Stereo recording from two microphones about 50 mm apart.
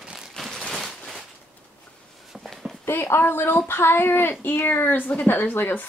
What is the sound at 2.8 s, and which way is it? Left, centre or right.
Speech, left.